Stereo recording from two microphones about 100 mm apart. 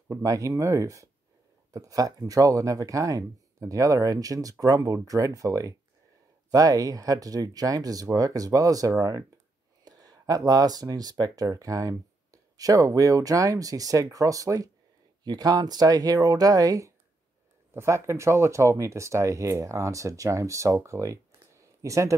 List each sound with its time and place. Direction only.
0.2 s speech: 35° right (ahead or behind)